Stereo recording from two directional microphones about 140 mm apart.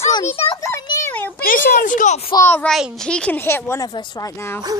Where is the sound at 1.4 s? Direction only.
75° left (ahead or behind).